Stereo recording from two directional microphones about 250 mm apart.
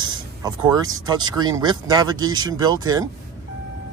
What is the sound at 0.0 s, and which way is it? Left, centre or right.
Speech, centre.